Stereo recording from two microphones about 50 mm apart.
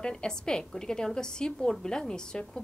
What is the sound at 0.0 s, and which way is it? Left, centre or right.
A woman's voice, centre.